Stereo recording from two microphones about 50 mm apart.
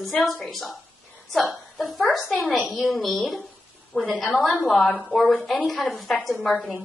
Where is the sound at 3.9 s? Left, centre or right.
Left.